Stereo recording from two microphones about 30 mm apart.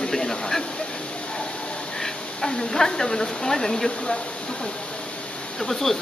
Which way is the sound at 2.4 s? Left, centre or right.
Centre.